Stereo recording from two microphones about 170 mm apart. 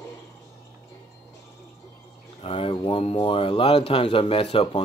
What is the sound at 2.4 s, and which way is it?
Speech, 35° left (ahead or behind).